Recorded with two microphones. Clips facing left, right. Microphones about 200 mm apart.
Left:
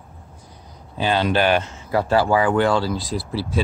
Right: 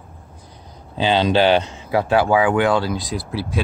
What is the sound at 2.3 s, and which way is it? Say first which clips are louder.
Speech: right 1 dB; centre (ahead or behind).